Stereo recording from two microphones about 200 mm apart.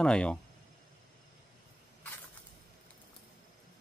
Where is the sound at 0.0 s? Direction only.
5° left (ahead or behind).